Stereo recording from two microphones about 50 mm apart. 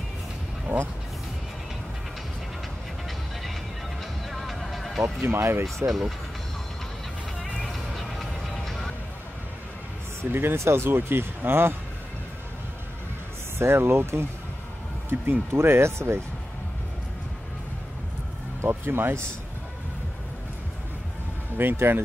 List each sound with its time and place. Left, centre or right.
0.7 s speech: right
4.3 s music: centre
5.0 s speech: right
5.4 s speech: right
5.9 s speech: centre
7.4 s music: centre
10.3 s speech: right
13.6 s speech: right
15.5 s speech: right
18.7 s speech: right
21.5 s speech: right